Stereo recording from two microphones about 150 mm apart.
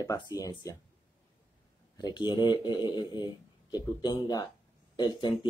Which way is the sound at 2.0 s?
30° left (ahead or behind).